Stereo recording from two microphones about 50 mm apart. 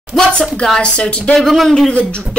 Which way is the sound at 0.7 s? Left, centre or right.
Centre.